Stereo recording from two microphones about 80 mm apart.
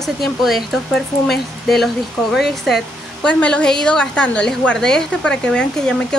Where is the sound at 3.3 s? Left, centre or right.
Centre.